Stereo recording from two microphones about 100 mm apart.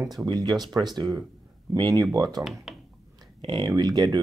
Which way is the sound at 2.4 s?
5° right (ahead or behind).